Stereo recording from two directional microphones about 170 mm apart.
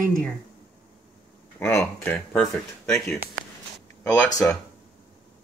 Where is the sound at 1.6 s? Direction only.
15° left (ahead or behind).